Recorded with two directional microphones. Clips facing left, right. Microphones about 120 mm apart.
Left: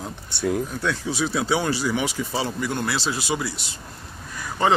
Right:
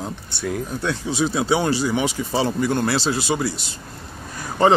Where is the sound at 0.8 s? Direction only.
25° right (ahead or behind).